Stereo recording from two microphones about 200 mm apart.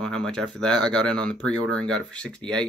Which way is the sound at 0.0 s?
5° left (ahead or behind).